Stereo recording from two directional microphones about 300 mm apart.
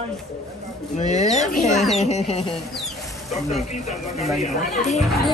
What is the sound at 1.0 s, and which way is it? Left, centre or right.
Speech, left.